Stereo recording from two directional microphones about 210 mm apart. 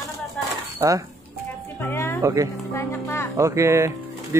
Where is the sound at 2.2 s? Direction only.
15° right (ahead or behind).